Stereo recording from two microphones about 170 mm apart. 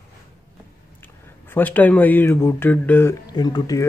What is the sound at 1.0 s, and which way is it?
Speech, 10° left (ahead or behind).